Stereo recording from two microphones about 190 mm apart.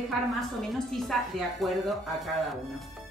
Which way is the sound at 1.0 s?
Centre (ahead or behind).